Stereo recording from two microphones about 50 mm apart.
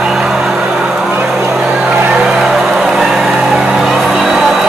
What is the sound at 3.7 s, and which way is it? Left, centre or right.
Music, centre.